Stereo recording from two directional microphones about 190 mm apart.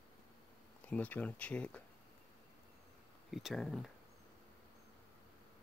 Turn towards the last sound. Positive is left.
turn(degrees=0)  # may be behind; listen again after turning